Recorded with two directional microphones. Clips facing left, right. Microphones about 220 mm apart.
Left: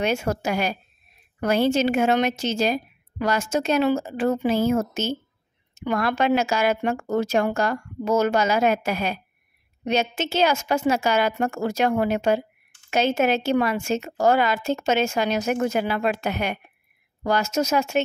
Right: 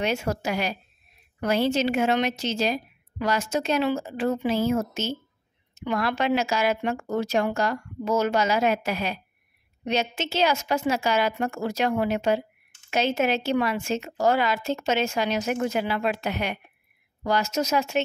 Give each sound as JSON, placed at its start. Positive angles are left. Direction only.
{"t": 0.0, "sound": "a woman's voice", "side_deg": 50}